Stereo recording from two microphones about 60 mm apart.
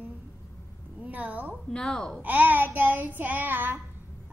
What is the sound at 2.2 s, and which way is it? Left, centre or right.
Child singing, right.